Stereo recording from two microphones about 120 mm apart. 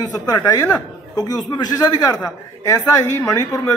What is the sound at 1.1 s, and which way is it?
A man's voice, 35° left (ahead or behind).